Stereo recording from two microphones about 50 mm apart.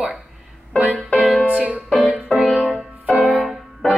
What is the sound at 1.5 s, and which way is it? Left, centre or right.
Music, right.